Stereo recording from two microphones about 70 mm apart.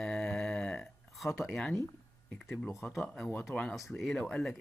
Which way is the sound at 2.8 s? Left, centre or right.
Centre.